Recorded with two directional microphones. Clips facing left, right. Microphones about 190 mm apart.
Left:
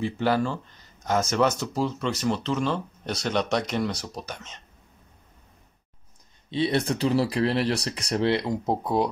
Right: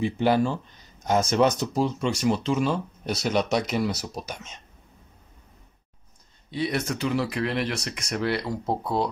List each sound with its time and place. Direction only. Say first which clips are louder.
0.0 s speech: right 2 dB; 15° right (ahead or behind)
6.5 s speech: left 3 dB; 30° left (ahead or behind)